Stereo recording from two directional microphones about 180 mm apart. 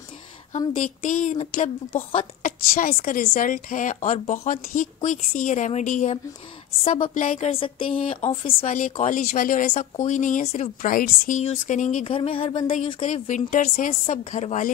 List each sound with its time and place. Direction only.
0.7 s a woman's voice: 45° left (ahead or behind)
8.7 s a woman's voice: 45° left (ahead or behind)
12.1 s speech: 30° left (ahead or behind)
13.0 s a woman's voice: 45° left (ahead or behind)